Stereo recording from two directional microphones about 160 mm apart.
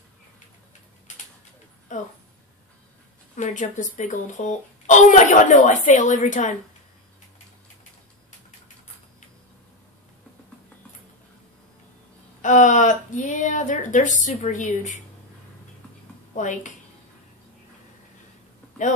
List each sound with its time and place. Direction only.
1.9 s speech: 50° left (ahead or behind)
3.3 s a child's voice: 50° left (ahead or behind)
12.4 s a child's voice: 50° left (ahead or behind)
16.3 s a child's voice: 50° left (ahead or behind)